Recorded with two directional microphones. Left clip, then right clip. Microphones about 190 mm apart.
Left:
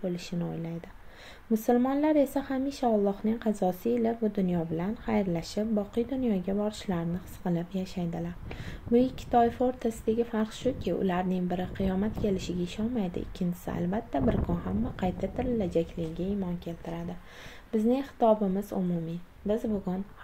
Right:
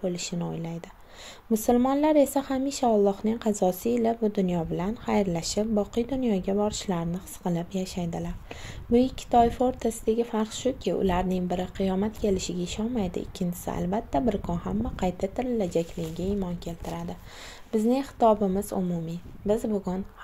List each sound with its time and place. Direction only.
0.0 s speech: 25° right (ahead or behind)